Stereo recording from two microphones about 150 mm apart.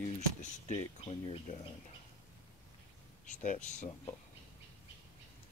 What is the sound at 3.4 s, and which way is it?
Speech, 55° left (ahead or behind).